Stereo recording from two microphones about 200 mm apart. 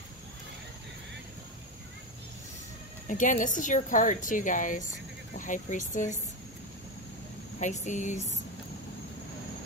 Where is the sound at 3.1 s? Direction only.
40° left (ahead or behind).